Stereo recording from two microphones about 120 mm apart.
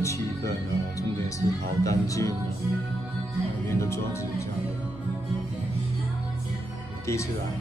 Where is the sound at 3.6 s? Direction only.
25° left (ahead or behind).